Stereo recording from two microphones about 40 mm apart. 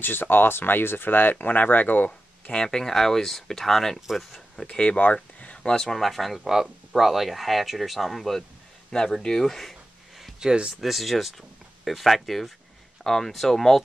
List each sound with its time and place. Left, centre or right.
0.0 s speech: left
1.4 s speech: left
2.5 s speech: centre
4.6 s speech: left
5.0 s a sound: left
5.7 s speech: centre
5.9 s speech: centre
6.4 s speech: centre
9.2 s a sound: centre
10.4 s speech: right
10.8 s speech: centre